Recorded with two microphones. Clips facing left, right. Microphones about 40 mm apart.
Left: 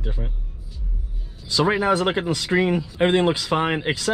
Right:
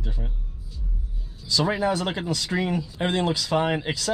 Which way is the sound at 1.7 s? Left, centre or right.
Left.